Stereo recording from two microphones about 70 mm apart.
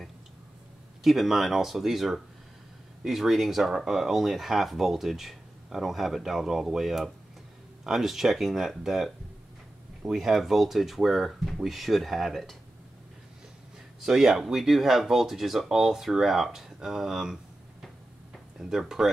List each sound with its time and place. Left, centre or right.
1.0 s speech: centre
14.0 s speech: centre
18.6 s speech: centre